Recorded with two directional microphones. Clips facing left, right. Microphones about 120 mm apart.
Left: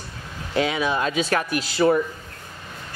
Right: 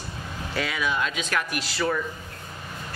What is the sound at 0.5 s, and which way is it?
Speech, 30° left (ahead or behind).